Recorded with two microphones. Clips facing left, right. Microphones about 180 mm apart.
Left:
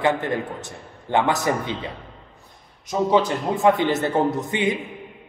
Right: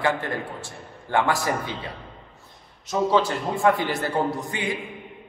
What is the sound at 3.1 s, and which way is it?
A man's voice, 20° left (ahead or behind).